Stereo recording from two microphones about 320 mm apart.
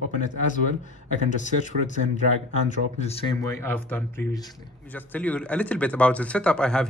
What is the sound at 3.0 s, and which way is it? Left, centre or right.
Speech, centre.